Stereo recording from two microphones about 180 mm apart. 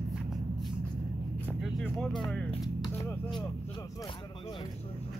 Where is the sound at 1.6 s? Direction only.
Centre (ahead or behind).